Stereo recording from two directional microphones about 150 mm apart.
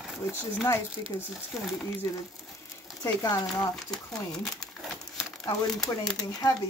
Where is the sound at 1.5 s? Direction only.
5° right (ahead or behind).